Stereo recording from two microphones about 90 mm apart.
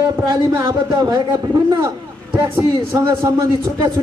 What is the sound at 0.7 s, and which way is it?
A man's voice, 45° right (ahead or behind).